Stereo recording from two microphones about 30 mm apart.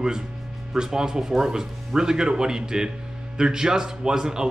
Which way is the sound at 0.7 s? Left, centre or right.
Right.